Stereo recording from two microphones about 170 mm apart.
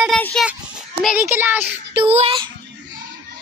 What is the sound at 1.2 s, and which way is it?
Speech, 10° right (ahead or behind).